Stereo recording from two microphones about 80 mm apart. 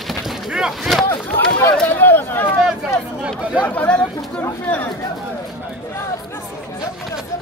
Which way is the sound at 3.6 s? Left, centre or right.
Centre.